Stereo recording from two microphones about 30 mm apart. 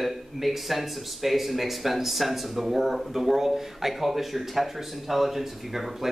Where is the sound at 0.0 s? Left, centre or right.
Centre.